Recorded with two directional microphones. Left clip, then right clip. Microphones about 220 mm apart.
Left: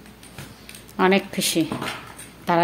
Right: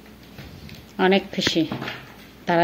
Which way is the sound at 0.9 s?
10° left (ahead or behind).